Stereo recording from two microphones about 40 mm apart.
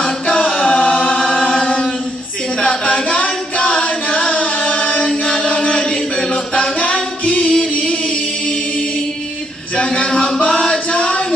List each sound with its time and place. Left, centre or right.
0.4 s chant: left
1.1 s chant: centre
2.6 s music: left
3.2 s singing: left
5.0 s chant: left
10.0 s a sound: left